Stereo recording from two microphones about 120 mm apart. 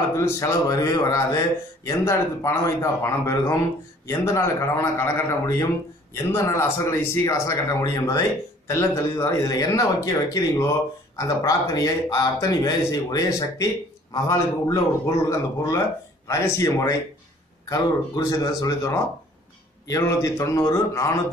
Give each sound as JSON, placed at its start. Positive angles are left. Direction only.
{"t": 0.1, "sound": "a man's voice", "side_deg": 25}